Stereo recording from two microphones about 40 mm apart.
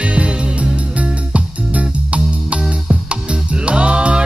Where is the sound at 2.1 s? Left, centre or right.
Right.